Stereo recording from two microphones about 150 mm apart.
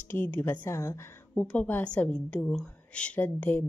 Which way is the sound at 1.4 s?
10° left (ahead or behind).